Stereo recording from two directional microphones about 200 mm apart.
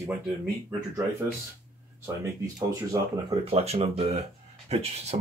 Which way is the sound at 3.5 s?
30° right (ahead or behind).